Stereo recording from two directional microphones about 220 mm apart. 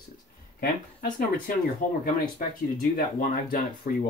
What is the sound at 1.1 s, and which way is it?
Speech, 40° left (ahead or behind).